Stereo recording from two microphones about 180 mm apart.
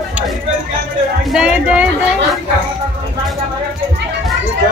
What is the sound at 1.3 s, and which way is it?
Speech, 5° right (ahead or behind).